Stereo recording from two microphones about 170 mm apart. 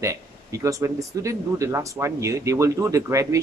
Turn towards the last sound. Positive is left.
turn(degrees=-15)  # may be behind; listen again after turning